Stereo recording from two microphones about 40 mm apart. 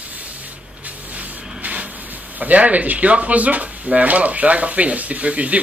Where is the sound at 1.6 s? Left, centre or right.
Right.